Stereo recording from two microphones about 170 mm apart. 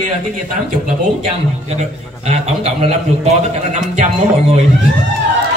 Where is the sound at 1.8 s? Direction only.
40° right (ahead or behind).